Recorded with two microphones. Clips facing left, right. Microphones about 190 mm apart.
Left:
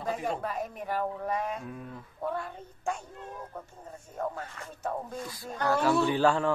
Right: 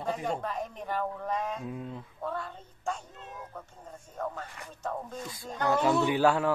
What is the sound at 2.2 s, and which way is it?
Speech, 10° left (ahead or behind).